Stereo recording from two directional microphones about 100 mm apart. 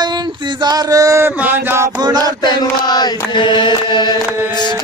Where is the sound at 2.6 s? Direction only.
45° left (ahead or behind).